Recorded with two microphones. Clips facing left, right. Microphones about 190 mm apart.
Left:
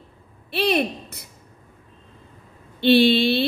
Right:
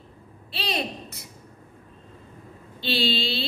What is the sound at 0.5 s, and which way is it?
Speech, 60° left (ahead or behind).